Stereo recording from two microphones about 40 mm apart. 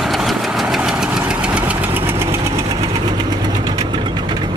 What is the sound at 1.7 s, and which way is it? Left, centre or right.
Vehicle, right.